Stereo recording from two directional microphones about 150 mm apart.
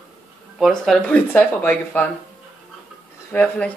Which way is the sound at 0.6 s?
5° left (ahead or behind).